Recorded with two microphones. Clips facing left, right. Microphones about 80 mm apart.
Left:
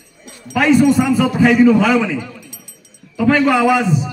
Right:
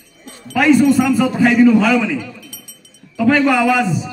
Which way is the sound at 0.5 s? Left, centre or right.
Left.